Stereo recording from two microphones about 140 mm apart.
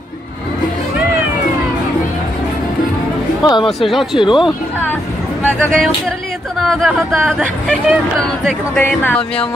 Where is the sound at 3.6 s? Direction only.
Centre (ahead or behind).